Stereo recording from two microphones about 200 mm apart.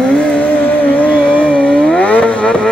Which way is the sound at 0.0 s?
5° left (ahead or behind).